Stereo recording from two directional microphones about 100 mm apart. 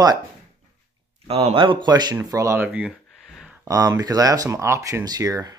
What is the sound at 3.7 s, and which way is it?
Speech, 35° right (ahead or behind).